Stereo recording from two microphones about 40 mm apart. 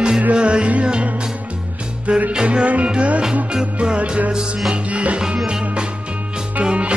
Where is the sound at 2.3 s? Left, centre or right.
Right.